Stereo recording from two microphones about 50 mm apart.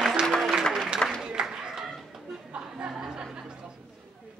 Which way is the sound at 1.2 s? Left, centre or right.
Centre.